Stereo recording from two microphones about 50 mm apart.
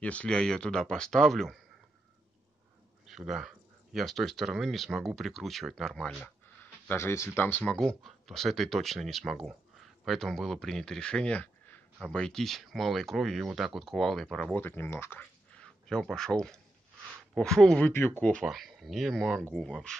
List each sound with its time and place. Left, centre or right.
0.0 s speech: left; by 1.6 s centre
3.1 s speech: centre
6.2 s a sound: left
7.0 s speech: left
8.0 s speech: centre
11.3 s a sound: left
12.1 s speech: centre
14.5 s speech: left
15.5 s speech: centre
17.7 s speech: left
18.4 s speech: centre